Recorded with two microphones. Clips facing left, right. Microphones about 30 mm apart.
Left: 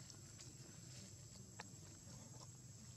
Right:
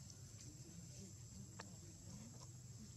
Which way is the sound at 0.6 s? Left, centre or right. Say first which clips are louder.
Right 1 dB; left.